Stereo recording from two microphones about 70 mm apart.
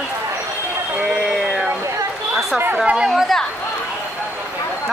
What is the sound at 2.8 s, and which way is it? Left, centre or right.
Speech, centre.